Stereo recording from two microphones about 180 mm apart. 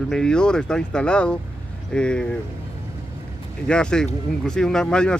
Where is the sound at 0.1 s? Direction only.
5° left (ahead or behind).